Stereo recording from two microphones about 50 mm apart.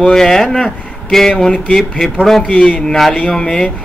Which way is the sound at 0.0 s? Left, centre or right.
Centre.